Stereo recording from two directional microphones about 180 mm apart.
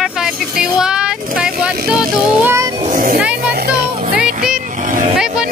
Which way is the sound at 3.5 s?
60° right (ahead or behind).